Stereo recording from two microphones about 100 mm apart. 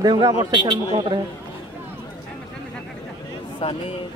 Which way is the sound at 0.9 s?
65° right (ahead or behind).